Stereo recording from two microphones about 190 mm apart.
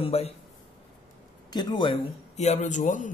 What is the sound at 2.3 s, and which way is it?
Speech, 35° left (ahead or behind).